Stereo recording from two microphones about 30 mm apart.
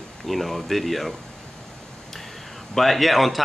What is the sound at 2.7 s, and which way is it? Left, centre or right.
Speech, centre.